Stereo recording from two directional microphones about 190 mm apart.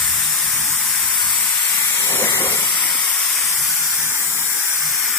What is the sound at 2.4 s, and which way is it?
Steam, 25° left (ahead or behind).